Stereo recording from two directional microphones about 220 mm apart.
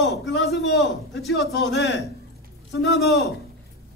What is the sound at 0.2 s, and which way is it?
A man's voice, 50° left (ahead or behind).